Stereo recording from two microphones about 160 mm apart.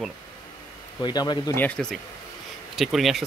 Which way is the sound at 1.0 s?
25° left (ahead or behind).